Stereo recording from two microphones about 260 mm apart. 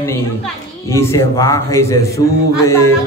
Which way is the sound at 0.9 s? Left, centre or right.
Centre.